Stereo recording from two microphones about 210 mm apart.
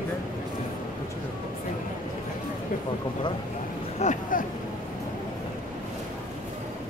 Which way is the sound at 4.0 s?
35° left (ahead or behind).